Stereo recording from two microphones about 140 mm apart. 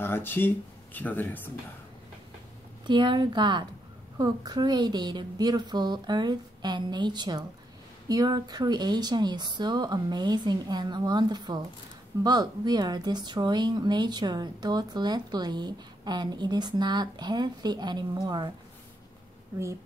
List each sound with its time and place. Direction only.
0.0 s speech: 15° left (ahead or behind)
2.9 s speech: 35° right (ahead or behind)